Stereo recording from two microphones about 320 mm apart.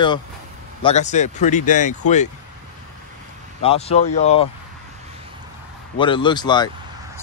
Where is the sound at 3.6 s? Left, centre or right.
Centre.